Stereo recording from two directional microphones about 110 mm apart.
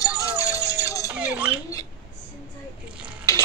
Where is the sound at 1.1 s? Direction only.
10° right (ahead or behind).